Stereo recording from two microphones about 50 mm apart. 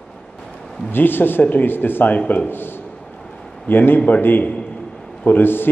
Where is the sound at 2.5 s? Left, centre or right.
Left.